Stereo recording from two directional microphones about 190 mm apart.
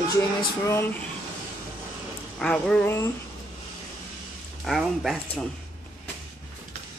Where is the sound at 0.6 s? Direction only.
15° left (ahead or behind).